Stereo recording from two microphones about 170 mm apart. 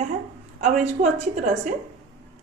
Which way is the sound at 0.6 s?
45° right (ahead or behind).